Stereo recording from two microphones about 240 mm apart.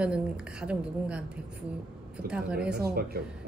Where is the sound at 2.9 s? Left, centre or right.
Right.